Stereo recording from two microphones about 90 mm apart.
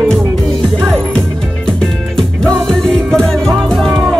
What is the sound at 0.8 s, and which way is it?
Music, 5° left (ahead or behind).